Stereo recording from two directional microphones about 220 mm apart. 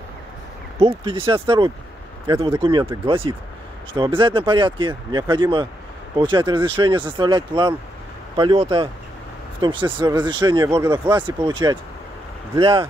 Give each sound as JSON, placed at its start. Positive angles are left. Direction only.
{"t": 0.7, "sound": "speech", "side_deg": -25}
{"t": 2.6, "sound": "speech", "side_deg": -20}